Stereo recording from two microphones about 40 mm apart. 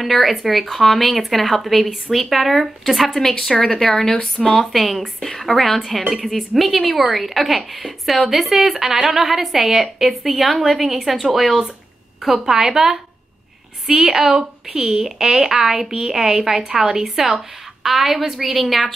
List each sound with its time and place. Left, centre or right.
0.0 s a woman's voice: centre
3.2 s speech: centre
4.4 s a woman's voice: centre